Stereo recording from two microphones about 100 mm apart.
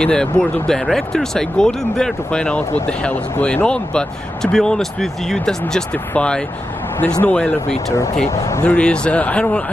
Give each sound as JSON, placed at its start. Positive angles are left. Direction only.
{"t": 0.0, "sound": "speech", "side_deg": 10}
{"t": 8.4, "sound": "speech", "side_deg": 35}
{"t": 8.6, "sound": "speech", "side_deg": 10}